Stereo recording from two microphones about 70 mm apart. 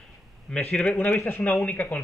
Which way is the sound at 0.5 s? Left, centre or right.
Centre.